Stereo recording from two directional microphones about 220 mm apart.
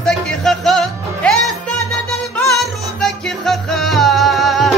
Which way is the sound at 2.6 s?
Centre (ahead or behind).